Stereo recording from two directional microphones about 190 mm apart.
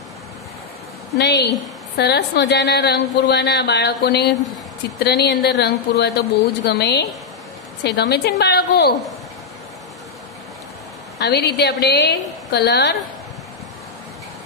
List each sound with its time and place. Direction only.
1.1 s speech: 60° left (ahead or behind)
11.1 s speech: 60° left (ahead or behind)